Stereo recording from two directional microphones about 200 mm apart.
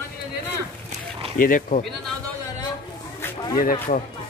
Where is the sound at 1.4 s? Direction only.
45° left (ahead or behind).